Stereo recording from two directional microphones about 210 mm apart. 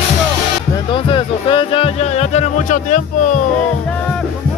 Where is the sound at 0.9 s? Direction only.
25° left (ahead or behind).